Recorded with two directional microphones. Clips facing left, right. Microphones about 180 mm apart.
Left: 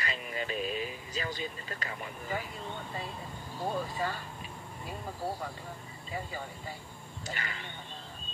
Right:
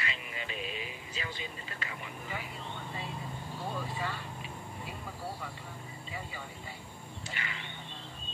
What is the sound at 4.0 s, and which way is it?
Speech, 40° left (ahead or behind).